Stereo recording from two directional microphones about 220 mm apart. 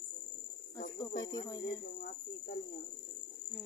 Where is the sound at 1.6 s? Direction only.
45° left (ahead or behind).